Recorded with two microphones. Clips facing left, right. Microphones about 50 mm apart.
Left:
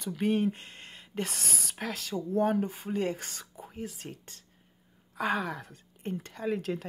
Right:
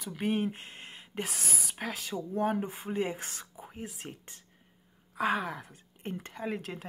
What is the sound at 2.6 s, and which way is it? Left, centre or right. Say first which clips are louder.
Speech: left 2 dB; centre.